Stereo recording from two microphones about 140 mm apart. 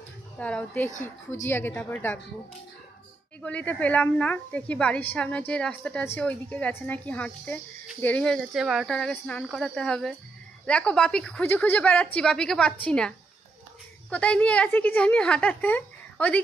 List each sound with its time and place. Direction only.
0.4 s a woman's voice: 10° left (ahead or behind)
3.4 s a woman's voice: 10° left (ahead or behind)
8.9 s a woman's voice: 10° left (ahead or behind)
14.1 s a woman's voice: 10° left (ahead or behind)